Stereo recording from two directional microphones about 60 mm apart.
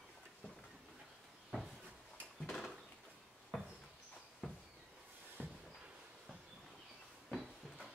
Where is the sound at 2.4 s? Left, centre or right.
Centre.